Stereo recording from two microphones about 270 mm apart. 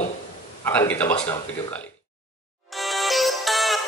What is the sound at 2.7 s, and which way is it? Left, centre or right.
Music, centre.